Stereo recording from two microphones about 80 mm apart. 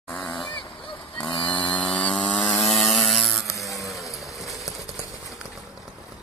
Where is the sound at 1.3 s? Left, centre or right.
Left.